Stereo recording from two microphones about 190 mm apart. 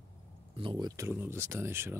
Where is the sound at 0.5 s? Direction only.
25° right (ahead or behind).